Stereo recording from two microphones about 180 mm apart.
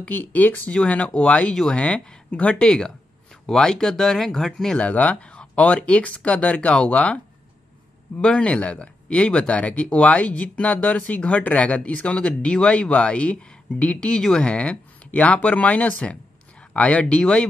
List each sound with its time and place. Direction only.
0.0 s speech: 10° left (ahead or behind)
8.2 s speech: 5° left (ahead or behind)